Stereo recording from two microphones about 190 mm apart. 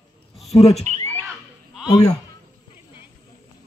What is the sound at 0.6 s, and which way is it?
Speech, 35° left (ahead or behind).